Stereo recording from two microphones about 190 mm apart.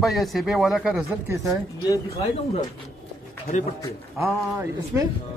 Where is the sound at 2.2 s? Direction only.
35° left (ahead or behind).